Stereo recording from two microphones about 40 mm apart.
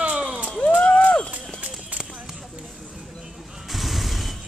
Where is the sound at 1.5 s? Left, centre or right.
Right.